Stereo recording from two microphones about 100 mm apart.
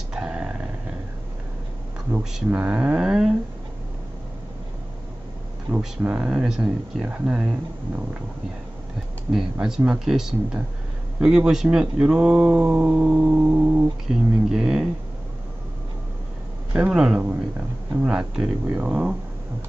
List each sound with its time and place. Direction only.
0.1 s dog: 10° right (ahead or behind)
2.3 s speech: 10° right (ahead or behind)
5.8 s speech: 5° right (ahead or behind)
9.3 s speech: 5° right (ahead or behind)
16.7 s speech: 10° right (ahead or behind)
18.9 s speech: 20° right (ahead or behind)